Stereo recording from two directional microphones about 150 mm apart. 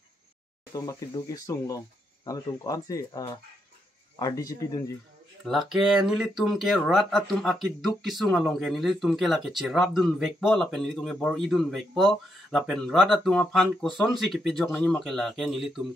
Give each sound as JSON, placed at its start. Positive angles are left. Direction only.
{"t": 0.7, "sound": "speech", "side_deg": 25}
{"t": 5.4, "sound": "speech", "side_deg": 0}